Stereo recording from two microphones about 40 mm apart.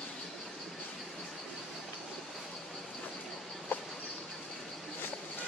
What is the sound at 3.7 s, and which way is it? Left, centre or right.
Insect, left.